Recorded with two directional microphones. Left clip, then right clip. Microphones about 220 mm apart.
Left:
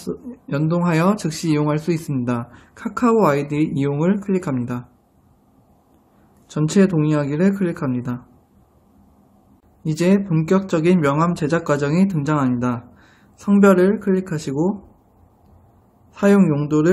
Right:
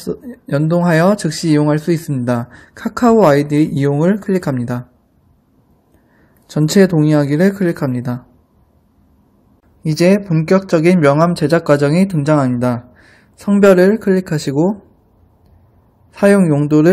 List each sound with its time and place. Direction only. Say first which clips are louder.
0.0 s speech: right 5 dB; 25° right (ahead or behind)
6.4 s speech: right 6 dB; 25° right (ahead or behind)
9.8 s speech: right 6 dB; 25° right (ahead or behind)
16.1 s speech: right 5 dB; 25° right (ahead or behind)